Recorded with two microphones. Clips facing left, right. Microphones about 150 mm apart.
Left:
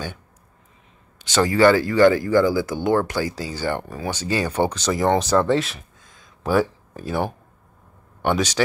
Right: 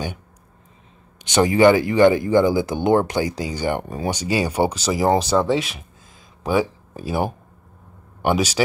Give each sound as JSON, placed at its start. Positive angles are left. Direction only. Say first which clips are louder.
{"t": 1.2, "sound": "speech", "louder": "right 2 dB", "side_deg": -20}